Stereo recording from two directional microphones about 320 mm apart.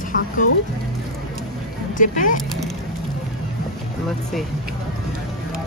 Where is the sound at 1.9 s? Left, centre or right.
Left.